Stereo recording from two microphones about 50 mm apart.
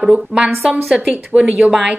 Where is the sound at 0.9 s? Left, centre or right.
Centre.